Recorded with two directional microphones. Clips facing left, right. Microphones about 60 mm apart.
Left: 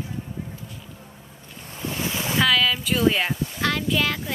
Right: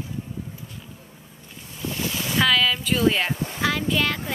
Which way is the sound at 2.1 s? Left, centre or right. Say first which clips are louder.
Left 1 dB; left.